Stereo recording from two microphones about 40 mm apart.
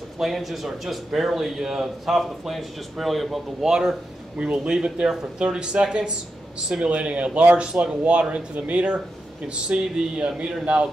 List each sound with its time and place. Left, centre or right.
0.2 s speech: centre
3.6 s speech: centre